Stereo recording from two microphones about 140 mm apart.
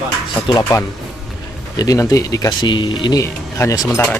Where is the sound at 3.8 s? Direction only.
10° left (ahead or behind).